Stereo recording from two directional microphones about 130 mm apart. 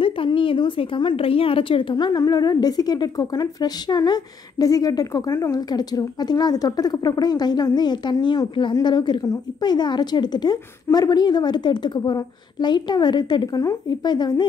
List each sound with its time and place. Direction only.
0.0 s a woman's voice: 40° left (ahead or behind)